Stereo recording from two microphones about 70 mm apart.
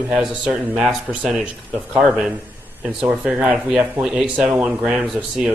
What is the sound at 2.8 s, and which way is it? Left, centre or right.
Speech, centre.